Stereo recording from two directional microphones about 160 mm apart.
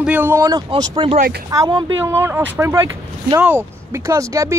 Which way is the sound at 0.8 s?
30° right (ahead or behind).